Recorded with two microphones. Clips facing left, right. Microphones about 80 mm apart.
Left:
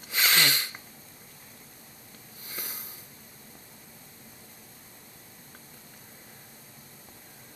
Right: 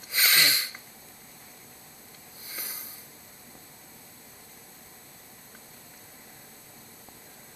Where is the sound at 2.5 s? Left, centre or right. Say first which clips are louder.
Left 1 dB; left.